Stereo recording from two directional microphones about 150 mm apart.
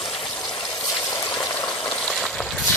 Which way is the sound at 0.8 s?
25° left (ahead or behind).